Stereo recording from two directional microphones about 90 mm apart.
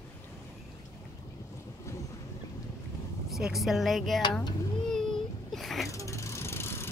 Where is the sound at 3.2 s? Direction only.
5° right (ahead or behind).